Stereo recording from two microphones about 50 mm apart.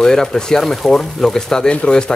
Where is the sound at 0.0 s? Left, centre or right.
Centre.